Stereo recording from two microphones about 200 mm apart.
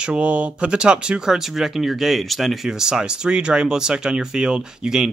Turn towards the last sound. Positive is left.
turn(degrees=-5)  # may be behind; listen again after turning